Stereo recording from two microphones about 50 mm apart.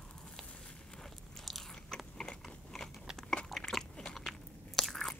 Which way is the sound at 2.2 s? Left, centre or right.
Centre.